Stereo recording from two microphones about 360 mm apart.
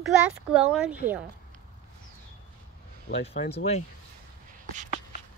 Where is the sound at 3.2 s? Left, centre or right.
Centre.